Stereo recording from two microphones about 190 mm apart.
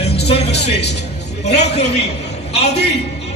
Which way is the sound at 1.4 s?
35° left (ahead or behind).